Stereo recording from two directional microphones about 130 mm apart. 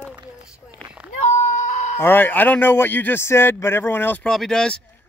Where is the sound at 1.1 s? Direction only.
70° left (ahead or behind).